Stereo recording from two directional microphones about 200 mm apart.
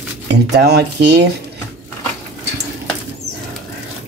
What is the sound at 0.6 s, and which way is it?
Dishes, 55° right (ahead or behind).